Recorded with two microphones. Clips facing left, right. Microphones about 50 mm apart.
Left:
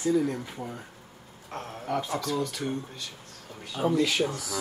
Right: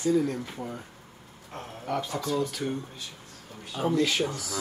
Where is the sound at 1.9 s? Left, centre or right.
Centre.